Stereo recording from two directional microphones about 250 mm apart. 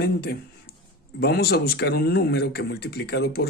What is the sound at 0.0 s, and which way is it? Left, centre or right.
Speech, left.